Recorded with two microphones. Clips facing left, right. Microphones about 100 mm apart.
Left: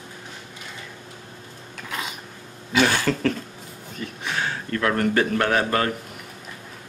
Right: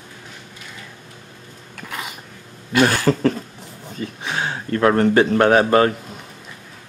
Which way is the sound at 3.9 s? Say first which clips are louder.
Right 3 dB; 25° right (ahead or behind).